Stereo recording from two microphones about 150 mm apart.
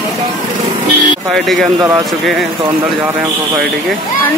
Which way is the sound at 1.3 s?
Centre (ahead or behind).